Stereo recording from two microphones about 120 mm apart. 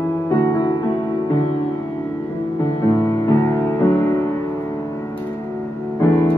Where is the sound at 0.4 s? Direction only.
30° left (ahead or behind).